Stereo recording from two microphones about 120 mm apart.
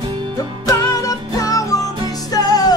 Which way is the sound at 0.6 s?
30° left (ahead or behind).